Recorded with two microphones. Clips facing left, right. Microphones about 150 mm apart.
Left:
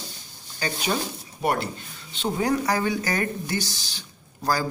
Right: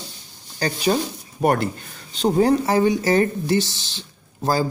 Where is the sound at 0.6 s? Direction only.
40° right (ahead or behind).